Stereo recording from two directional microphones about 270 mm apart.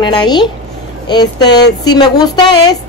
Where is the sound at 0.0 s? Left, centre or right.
Centre.